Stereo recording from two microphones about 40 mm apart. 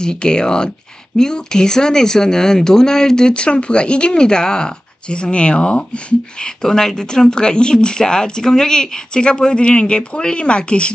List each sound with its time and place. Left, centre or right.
0.0 s speech: centre
6.6 s speech: centre